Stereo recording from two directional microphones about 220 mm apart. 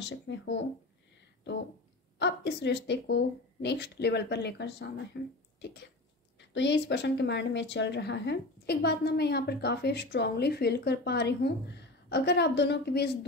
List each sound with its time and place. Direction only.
0.0 s a woman's voice: 50° left (ahead or behind)
2.1 s a woman's voice: 50° left (ahead or behind)
6.5 s a woman's voice: 55° left (ahead or behind)